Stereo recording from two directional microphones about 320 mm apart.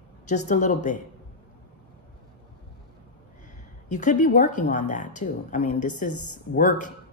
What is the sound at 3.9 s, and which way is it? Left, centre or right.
Speech, left.